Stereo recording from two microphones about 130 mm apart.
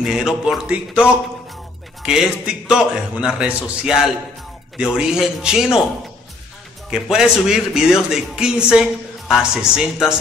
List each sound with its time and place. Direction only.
0.0 s a man's voice: 5° right (ahead or behind)
2.0 s a man's voice: 5° right (ahead or behind)
6.9 s a man's voice: 5° right (ahead or behind)